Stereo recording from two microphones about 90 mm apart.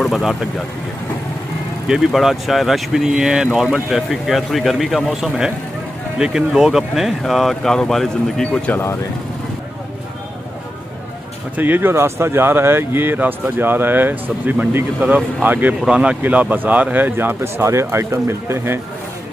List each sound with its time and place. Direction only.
0.0 s speech: centre (ahead or behind)
1.9 s speech: 5° right (ahead or behind)
8.7 s speech: 20° left (ahead or behind)
11.5 s speech: 20° right (ahead or behind)